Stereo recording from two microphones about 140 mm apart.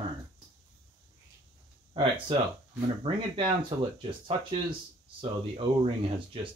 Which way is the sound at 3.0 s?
35° right (ahead or behind).